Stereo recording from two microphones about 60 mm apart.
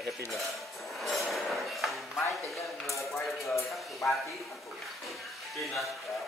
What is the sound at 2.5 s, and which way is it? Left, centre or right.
Dishes, left.